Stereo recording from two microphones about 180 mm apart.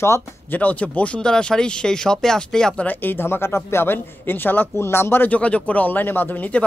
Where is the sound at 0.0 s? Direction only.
10° left (ahead or behind).